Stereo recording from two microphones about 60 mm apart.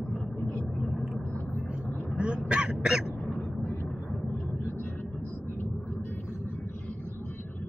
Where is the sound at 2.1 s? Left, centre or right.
Centre.